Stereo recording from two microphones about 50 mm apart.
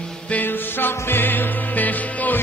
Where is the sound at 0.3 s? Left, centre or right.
Left.